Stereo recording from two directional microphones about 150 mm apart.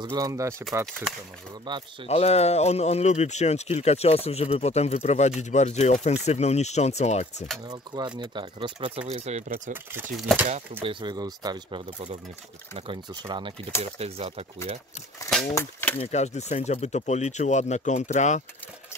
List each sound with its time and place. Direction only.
0.0 s speech: 25° right (ahead or behind)
1.7 s speech: 30° right (ahead or behind)
2.0 s speech: 45° left (ahead or behind)
7.6 s speech: 25° right (ahead or behind); by 9.4 s 45° right (ahead or behind)
10.1 s speech: 5° right (ahead or behind)
10.8 s speech: 35° right (ahead or behind)
13.9 s speech: 40° right (ahead or behind)
15.5 s speech: 10° left (ahead or behind)
16.0 s speech: 50° left (ahead or behind)